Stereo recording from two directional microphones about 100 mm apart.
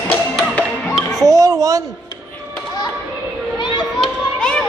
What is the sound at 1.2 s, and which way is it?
Music, 35° right (ahead or behind).